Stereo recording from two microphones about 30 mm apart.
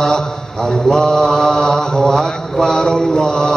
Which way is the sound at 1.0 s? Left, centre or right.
Left.